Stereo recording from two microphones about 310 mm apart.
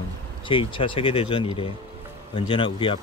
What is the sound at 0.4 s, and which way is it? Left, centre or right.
A man's voice, centre.